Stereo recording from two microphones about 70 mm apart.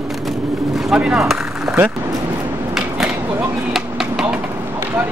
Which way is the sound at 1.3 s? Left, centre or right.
Centre.